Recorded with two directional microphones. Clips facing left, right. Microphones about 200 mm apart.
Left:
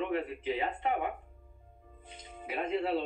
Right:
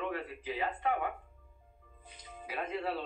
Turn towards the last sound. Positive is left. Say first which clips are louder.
# left 5 dB
turn(degrees=25)  # may be behind; listen again after turning